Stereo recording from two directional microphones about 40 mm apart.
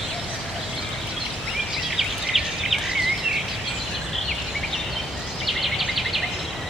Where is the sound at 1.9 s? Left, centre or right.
Centre.